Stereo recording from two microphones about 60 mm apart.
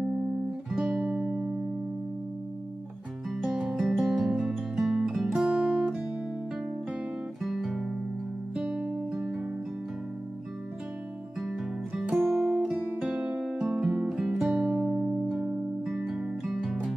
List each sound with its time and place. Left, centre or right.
0.7 s music: centre
0.9 s music: centre
3.5 s guitar: centre
5.5 s guitar: centre
7.4 s guitar: centre
8.6 s music: centre
11.4 s music: centre
13.1 s music: centre